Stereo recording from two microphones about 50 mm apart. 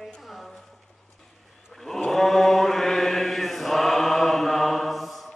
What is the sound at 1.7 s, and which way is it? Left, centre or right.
Mantra, centre.